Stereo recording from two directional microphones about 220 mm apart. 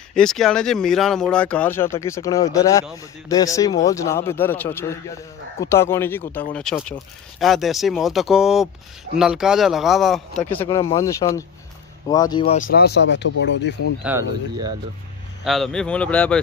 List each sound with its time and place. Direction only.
0.1 s a man's voice: centre (ahead or behind); by 12.5 s 20° left (ahead or behind)
12.6 s speech: 50° left (ahead or behind)
14.1 s speech: 10° right (ahead or behind)
15.4 s speech: centre (ahead or behind)